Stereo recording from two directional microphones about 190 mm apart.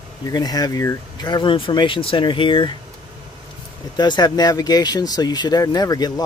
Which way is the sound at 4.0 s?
20° left (ahead or behind).